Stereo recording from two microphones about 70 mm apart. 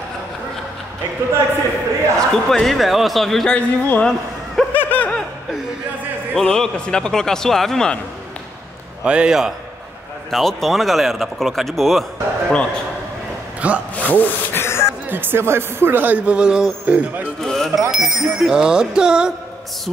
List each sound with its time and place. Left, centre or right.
2.1 s speech: centre
3.5 s speech: centre
4.7 s a sound: left
6.3 s speech: centre
9.0 s speech: centre
10.3 s speech: centre
13.6 s speech: centre
13.9 s a sound: left
15.0 s speech: right
16.3 s speech: centre
17.4 s a sound: centre
17.9 s speech: centre